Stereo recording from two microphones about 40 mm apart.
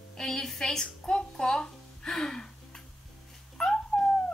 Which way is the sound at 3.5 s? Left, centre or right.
Centre.